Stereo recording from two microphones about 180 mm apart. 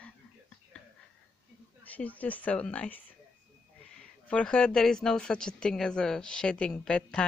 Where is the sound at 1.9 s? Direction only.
10° left (ahead or behind).